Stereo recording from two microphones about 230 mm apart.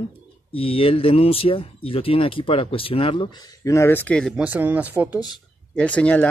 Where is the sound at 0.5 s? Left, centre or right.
Left; by 5.2 s centre.